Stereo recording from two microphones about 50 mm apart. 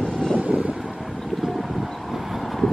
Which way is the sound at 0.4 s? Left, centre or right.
Right.